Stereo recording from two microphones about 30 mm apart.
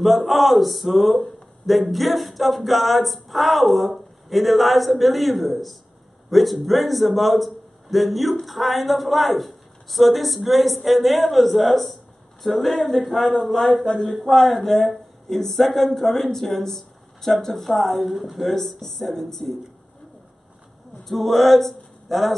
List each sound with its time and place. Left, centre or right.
0.0 s a woman's voice: centre
18.0 s a woman's voice: centre
18.4 s speech: centre
21.0 s speech: centre